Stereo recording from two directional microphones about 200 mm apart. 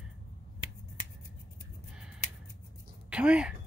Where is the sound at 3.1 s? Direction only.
5° right (ahead or behind).